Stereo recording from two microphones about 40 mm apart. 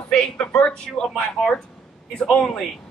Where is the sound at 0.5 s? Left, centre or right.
Left.